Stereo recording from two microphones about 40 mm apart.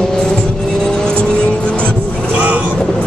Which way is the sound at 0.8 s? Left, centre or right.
Centre.